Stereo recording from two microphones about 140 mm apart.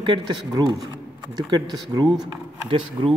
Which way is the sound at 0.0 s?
35° right (ahead or behind).